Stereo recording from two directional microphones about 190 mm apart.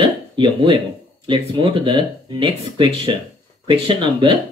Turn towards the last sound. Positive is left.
turn(degrees=-25)  # may be behind; listen again after turning